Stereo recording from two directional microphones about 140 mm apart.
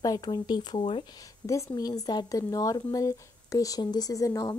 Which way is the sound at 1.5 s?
25° left (ahead or behind).